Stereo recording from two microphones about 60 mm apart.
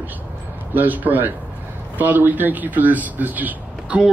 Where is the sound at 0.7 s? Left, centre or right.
Right.